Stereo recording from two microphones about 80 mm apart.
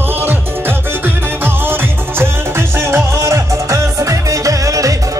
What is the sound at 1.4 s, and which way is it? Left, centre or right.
Music, right.